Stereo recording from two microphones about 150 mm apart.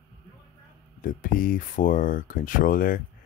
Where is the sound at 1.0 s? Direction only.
65° left (ahead or behind).